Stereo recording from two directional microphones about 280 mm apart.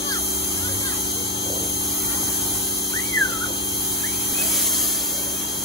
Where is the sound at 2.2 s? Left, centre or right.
Left.